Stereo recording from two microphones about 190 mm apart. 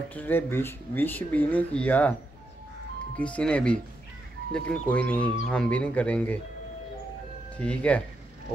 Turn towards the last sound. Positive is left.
turn(degrees=5)  # may be behind; listen again after turning